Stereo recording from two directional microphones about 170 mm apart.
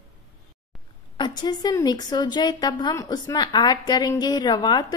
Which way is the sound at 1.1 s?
25° left (ahead or behind).